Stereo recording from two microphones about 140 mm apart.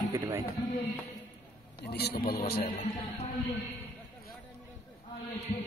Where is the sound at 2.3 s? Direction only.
90° left.